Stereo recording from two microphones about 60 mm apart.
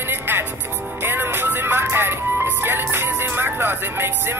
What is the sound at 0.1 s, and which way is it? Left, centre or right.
Music, right.